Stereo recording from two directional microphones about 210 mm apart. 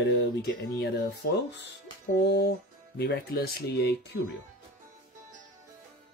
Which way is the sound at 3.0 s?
50° left (ahead or behind).